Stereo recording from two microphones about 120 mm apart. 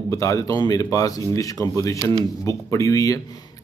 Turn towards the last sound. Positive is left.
turn(degrees=25)  # may be behind; listen again after turning